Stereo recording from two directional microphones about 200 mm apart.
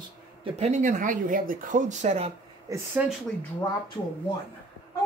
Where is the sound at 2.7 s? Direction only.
10° right (ahead or behind).